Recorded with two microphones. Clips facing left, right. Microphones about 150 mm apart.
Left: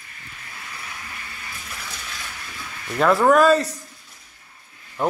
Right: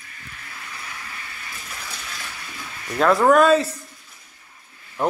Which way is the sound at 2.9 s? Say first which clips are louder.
Even; centre (ahead or behind).